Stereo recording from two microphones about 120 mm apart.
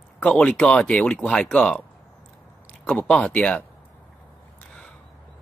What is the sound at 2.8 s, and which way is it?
Speech, 5° left (ahead or behind).